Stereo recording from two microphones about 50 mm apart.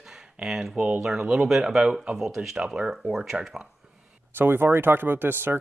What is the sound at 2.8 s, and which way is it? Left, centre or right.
Speech, centre.